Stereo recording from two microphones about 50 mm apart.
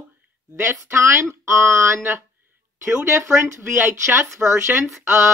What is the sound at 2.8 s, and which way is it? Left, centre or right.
Speech, right.